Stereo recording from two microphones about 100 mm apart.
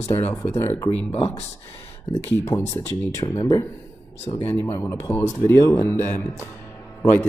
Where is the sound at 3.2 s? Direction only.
40° left (ahead or behind).